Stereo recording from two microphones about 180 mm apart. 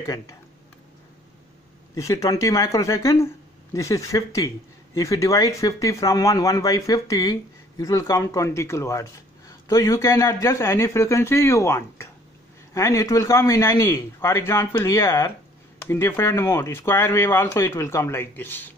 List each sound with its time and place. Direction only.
0.0 s speech: 20° left (ahead or behind)
2.0 s speech: 20° left (ahead or behind)